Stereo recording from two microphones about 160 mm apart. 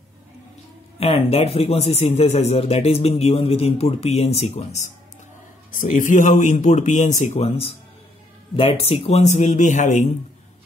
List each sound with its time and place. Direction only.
0.9 s speech: 40° left (ahead or behind)
5.7 s speech: 55° left (ahead or behind)